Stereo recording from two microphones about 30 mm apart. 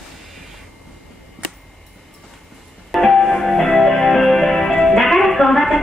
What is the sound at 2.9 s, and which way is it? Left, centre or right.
Music, centre.